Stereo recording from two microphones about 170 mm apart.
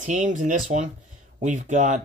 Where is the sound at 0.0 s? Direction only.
45° right (ahead or behind).